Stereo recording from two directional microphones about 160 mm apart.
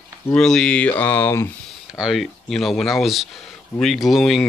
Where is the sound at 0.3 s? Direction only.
5° left (ahead or behind).